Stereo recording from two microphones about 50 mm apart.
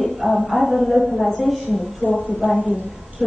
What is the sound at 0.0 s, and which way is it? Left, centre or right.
A woman's voice, centre.